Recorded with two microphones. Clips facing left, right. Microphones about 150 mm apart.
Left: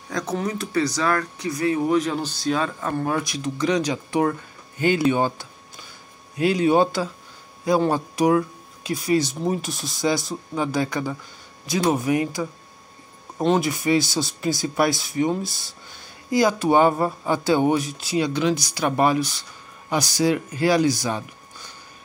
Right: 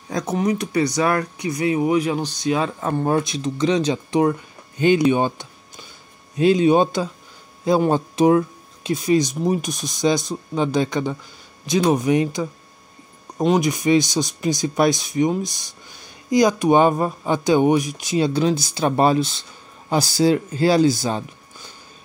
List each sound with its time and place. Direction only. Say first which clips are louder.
0.1 s speech: right 4 dB; 20° right (ahead or behind)
2.6 s speech: right 3 dB; 20° right (ahead or behind)